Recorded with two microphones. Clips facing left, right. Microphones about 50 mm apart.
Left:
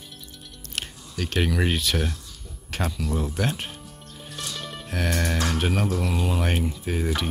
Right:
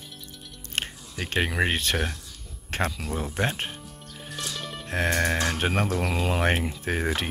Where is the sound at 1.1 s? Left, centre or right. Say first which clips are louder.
Left 2 dB; right.